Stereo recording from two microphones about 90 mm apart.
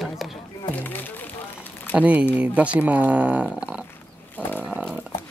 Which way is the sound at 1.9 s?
15° right (ahead or behind).